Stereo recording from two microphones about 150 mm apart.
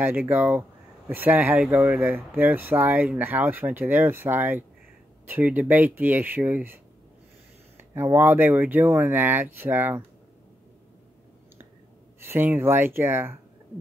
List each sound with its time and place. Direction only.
0.0 s speech: 10° right (ahead or behind)
7.9 s speech: 15° right (ahead or behind)
12.2 s speech: 15° right (ahead or behind)